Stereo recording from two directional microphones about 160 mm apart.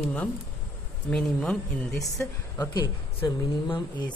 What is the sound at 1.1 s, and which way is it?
Speech, 5° left (ahead or behind).